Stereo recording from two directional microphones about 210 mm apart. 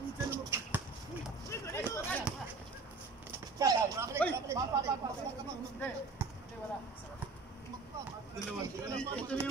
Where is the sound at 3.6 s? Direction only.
15° right (ahead or behind).